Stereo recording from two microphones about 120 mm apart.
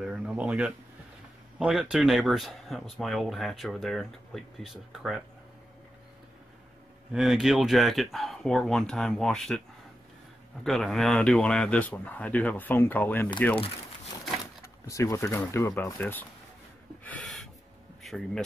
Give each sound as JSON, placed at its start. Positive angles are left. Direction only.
{"t": 0.0, "sound": "speech", "side_deg": -5}
{"t": 7.1, "sound": "speech", "side_deg": -5}
{"t": 10.6, "sound": "speech", "side_deg": 5}
{"t": 14.6, "sound": "speech", "side_deg": 25}
{"t": 16.0, "sound": "speech", "side_deg": 15}
{"t": 17.2, "sound": "a sound", "side_deg": 5}
{"t": 18.0, "sound": "speech", "side_deg": 0}